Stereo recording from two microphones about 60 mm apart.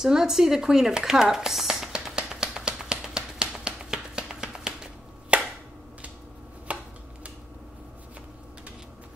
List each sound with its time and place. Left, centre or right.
0.0 s a sound: centre
5.3 s chop: centre
6.7 s chopping: right